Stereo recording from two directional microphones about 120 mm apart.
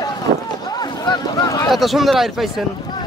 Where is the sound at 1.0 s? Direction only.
35° left (ahead or behind).